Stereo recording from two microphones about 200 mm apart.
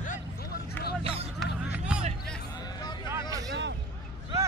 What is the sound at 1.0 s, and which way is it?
Hubbub, 30° right (ahead or behind).